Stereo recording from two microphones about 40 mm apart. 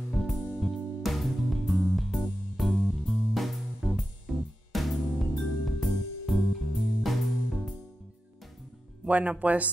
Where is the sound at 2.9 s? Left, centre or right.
Centre.